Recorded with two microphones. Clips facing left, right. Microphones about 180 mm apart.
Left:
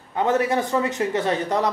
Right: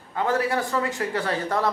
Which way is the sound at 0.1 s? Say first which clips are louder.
Left 3 dB; 20° left (ahead or behind).